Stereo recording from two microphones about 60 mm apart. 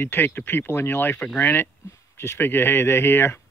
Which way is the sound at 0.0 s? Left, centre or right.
Left.